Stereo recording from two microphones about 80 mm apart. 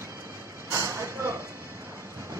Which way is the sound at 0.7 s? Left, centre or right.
Right.